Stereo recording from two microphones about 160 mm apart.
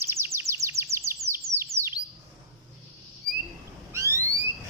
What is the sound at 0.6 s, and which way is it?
Chirp, 20° right (ahead or behind).